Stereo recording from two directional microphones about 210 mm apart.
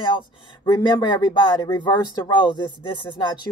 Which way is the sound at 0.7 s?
20° left (ahead or behind).